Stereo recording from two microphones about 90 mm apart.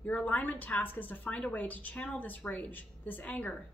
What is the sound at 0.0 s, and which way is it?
A woman's voice, 15° left (ahead or behind).